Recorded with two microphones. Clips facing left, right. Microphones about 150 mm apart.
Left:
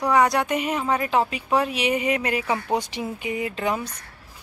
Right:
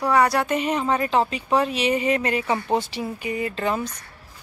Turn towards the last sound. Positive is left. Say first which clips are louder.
# right 1 dB
turn(degrees=10)  # may be behind; listen again after turning